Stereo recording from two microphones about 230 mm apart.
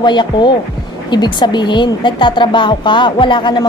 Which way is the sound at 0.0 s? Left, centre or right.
Centre.